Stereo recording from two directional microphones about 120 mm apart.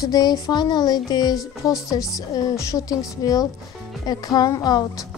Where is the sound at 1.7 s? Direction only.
30° left (ahead or behind).